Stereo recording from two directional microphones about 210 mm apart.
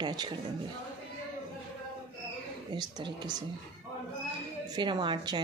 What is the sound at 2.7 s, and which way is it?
Speech, 20° right (ahead or behind).